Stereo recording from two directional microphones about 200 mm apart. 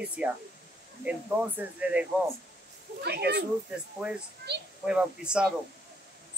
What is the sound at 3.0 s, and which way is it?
Speech, 55° right (ahead or behind).